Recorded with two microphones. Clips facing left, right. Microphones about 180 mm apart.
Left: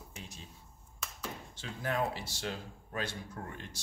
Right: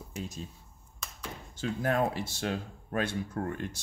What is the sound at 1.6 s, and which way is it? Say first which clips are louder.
Speech: right 6 dB; 50° right (ahead or behind).